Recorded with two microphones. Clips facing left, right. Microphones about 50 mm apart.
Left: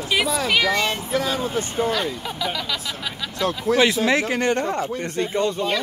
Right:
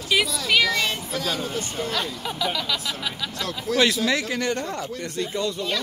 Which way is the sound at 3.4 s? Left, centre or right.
Left.